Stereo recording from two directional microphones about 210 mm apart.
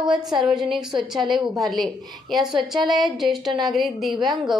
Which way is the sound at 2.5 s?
20° right (ahead or behind).